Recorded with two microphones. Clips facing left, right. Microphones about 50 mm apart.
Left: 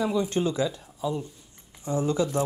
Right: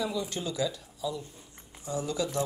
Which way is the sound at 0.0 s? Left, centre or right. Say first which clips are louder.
Left 7 dB; left.